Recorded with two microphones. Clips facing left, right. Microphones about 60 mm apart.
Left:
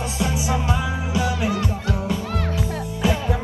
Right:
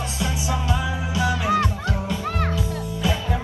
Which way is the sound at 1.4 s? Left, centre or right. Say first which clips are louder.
Right 2 dB; right.